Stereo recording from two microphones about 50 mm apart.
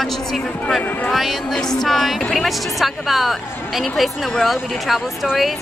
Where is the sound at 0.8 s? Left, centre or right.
Left.